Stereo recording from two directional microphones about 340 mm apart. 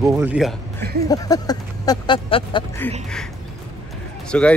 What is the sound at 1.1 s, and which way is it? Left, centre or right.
Speech, centre.